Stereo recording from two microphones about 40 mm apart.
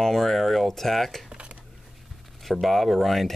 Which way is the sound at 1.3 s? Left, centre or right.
Right.